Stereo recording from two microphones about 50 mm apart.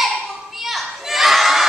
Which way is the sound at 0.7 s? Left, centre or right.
Centre.